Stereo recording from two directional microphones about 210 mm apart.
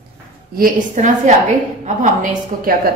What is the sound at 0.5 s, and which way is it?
Speech, 40° right (ahead or behind).